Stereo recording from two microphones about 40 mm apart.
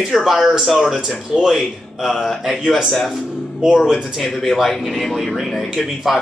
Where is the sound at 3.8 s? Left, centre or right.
Centre.